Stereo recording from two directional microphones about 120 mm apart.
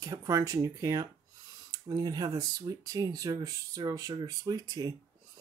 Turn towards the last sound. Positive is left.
turn(degrees=-30)  # may be behind; listen again after turning